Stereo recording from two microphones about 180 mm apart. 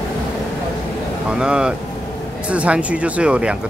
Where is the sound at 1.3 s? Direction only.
5° right (ahead or behind).